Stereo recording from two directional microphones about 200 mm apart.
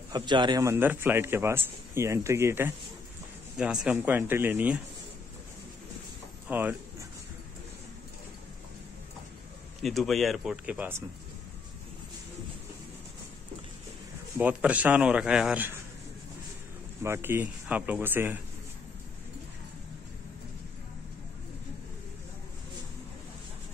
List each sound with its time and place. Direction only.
0.1 s a man's voice: 20° right (ahead or behind)
6.4 s a sound: 10° right (ahead or behind)
9.8 s speech: centre (ahead or behind)
14.4 s a man's voice: 5° right (ahead or behind)
17.0 s a man's voice: 10° right (ahead or behind)